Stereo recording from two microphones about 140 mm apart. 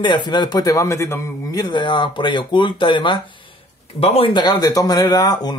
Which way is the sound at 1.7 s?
35° left (ahead or behind).